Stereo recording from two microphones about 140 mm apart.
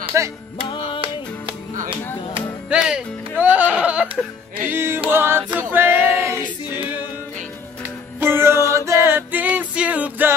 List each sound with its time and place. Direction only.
0.1 s music: 20° right (ahead or behind)
0.7 s music: 40° left (ahead or behind)
2.7 s music: 5° right (ahead or behind)
5.1 s singing: 15° right (ahead or behind)
8.2 s music: 15° right (ahead or behind)